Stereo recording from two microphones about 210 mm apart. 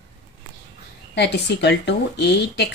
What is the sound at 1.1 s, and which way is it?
A woman's voice, 55° left (ahead or behind).